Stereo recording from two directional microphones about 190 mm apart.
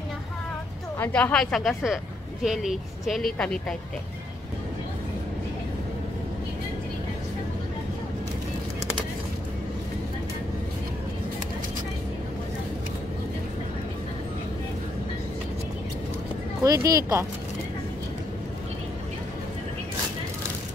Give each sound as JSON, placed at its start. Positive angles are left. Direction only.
{"t": 0.9, "sound": "speech", "side_deg": 10}
{"t": 16.6, "sound": "speech", "side_deg": -20}